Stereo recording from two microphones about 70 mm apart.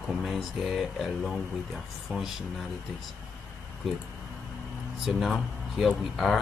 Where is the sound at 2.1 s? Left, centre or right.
Centre.